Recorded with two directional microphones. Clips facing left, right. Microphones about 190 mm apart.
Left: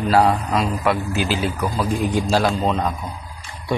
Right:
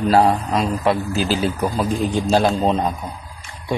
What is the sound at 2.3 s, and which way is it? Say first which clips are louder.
Speech: right 4 dB; 25° right (ahead or behind).